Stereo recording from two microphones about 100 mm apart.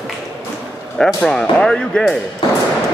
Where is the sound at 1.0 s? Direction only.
5° left (ahead or behind).